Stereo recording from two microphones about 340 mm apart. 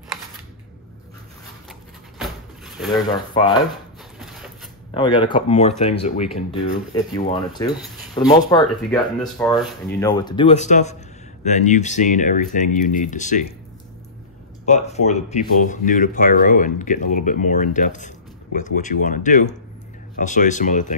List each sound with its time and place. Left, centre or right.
1.7 s a sound: centre
2.9 s speech: centre
4.2 s mechanisms: centre
4.9 s speech: centre
9.2 s speech: centre; by 13.4 s left
14.7 s speech: centre
20.2 s speech: left